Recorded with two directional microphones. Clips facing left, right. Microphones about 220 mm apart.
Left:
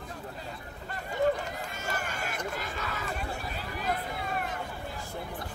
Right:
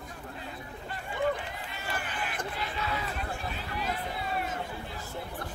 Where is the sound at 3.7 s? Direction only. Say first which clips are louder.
Left 2 dB; 50° left (ahead or behind).